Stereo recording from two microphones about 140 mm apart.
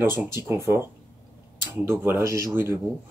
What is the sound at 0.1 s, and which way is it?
Speech, 20° right (ahead or behind).